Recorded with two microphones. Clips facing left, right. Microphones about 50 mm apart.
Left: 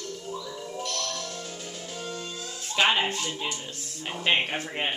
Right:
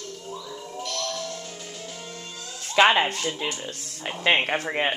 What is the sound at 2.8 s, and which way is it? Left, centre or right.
Music, right.